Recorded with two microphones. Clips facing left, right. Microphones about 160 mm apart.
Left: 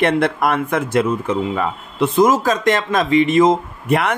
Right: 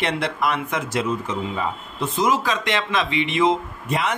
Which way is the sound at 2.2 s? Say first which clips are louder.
Left 6 dB; 45° left (ahead or behind).